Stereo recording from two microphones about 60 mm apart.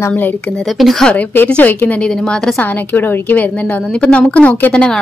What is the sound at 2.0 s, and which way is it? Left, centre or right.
Speech, centre.